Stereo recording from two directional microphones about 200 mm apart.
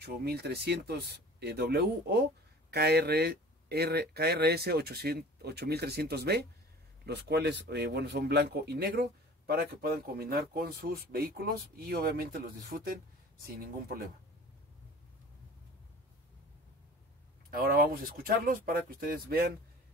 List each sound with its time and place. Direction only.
0.0 s speech: 55° right (ahead or behind)
17.5 s speech: 45° right (ahead or behind)